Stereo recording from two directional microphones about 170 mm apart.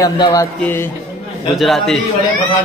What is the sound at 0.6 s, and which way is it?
Speech, 10° left (ahead or behind).